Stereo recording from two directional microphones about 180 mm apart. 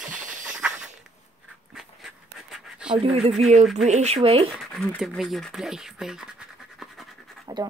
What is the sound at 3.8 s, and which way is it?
Speech, 40° right (ahead or behind).